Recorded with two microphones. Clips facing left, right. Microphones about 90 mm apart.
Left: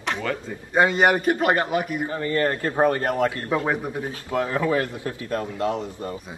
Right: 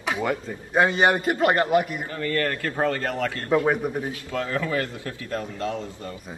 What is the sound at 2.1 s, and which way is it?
A man's voice, 25° left (ahead or behind).